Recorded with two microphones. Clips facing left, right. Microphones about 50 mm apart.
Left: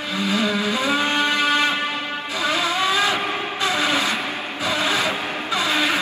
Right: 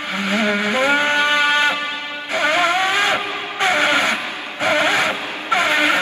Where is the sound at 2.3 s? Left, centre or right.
Right.